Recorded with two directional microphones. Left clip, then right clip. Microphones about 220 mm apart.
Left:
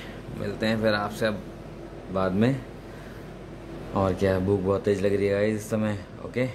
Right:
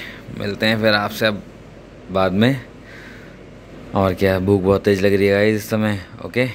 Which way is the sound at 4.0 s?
15° right (ahead or behind).